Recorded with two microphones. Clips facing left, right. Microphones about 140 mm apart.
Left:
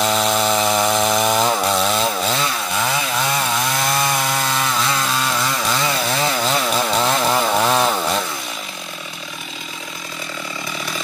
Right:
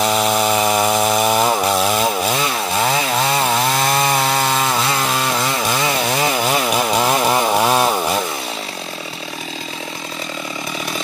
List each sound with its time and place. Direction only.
0.0 s chainsaw: 5° right (ahead or behind)
2.8 s chainsaw: 30° right (ahead or behind); by 8.2 s 10° right (ahead or behind)